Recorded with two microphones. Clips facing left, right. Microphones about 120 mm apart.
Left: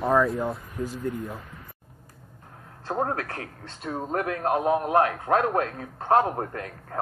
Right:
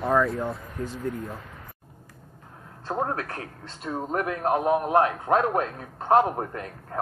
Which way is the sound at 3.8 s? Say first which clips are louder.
Even; 5° right (ahead or behind).